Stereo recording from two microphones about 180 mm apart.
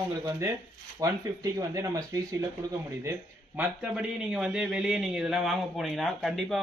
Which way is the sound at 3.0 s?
10° right (ahead or behind).